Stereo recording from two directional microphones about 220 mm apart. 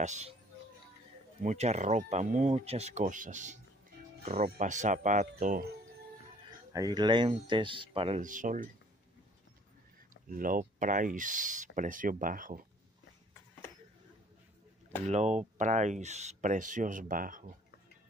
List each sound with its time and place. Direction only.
0.0 s speech: 30° right (ahead or behind)
1.4 s speech: 30° right (ahead or behind)
6.7 s speech: 15° right (ahead or behind); by 8.6 s 35° right (ahead or behind)
10.3 s speech: 40° right (ahead or behind)
15.0 s speech: 30° right (ahead or behind)